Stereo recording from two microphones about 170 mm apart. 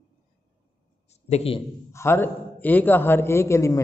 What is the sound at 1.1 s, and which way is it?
Speech, 40° left (ahead or behind).